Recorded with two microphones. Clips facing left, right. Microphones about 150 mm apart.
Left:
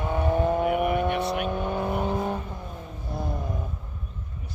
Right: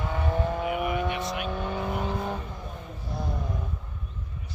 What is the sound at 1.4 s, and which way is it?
Vehicle, 15° left (ahead or behind).